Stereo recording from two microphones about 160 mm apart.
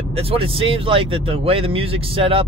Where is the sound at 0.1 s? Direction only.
35° right (ahead or behind).